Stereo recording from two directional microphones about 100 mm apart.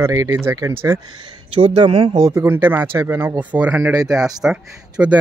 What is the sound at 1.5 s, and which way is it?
Speech, 65° right (ahead or behind).